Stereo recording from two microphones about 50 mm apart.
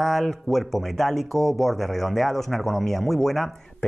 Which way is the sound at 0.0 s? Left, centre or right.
Centre.